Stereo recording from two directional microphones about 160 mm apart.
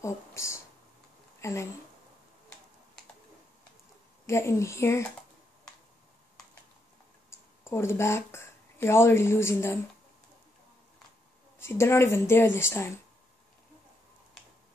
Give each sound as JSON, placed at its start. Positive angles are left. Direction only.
{"t": 0.0, "sound": "speech", "side_deg": 20}
{"t": 4.3, "sound": "a woman's voice", "side_deg": 15}
{"t": 7.2, "sound": "speech", "side_deg": 15}
{"t": 11.6, "sound": "a woman's voice", "side_deg": 15}